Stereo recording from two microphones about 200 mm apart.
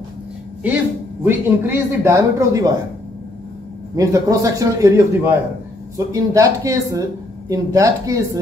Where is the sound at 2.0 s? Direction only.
15° right (ahead or behind).